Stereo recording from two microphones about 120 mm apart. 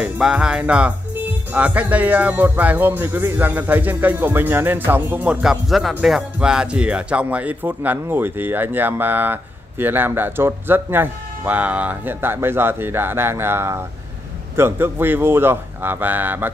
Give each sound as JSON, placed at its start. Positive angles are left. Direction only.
{"t": 0.0, "sound": "speech", "side_deg": -5}